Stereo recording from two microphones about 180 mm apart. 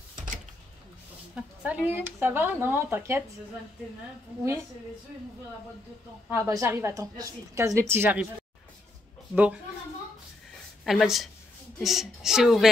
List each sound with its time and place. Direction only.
1.3 s a woman's voice: 10° right (ahead or behind)
6.3 s a woman's voice: 15° right (ahead or behind)
9.3 s a woman's voice: 5° right (ahead or behind)
10.8 s a woman's voice: centre (ahead or behind)